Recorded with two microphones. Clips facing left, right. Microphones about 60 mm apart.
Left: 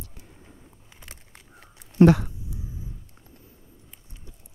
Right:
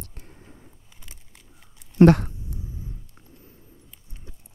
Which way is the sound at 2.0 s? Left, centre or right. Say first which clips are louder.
Right 2 dB; right.